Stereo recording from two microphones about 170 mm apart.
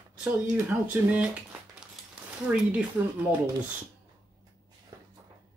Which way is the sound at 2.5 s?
10° right (ahead or behind).